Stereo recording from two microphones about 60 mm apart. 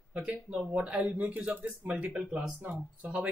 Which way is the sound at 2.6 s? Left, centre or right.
Right.